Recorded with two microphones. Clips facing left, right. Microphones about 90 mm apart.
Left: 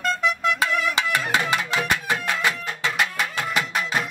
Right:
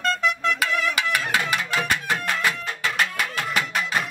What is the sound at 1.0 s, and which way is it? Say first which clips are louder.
Music: left 1 dB; 25° left (ahead or behind).